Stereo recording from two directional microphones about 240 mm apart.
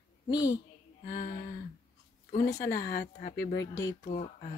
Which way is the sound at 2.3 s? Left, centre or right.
Centre.